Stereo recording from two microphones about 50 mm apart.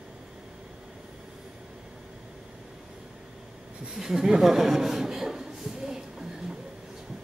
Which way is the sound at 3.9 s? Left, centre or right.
Centre.